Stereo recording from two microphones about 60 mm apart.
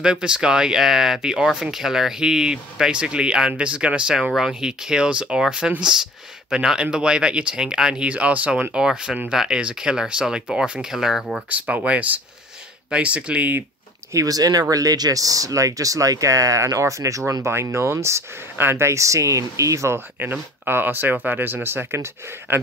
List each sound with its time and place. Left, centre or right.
0.0 s speech: centre
8.7 s speech: centre
11.4 s speech: right
14.1 s speech: right
18.6 s speech: right
20.2 s speech: right
21.9 s speech: right